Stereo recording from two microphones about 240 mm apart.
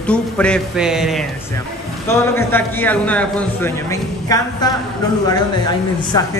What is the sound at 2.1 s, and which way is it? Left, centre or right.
A man's voice, centre.